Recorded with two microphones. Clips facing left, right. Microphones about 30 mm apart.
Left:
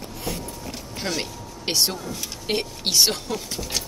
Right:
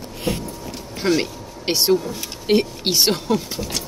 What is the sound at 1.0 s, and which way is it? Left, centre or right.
Speech, centre.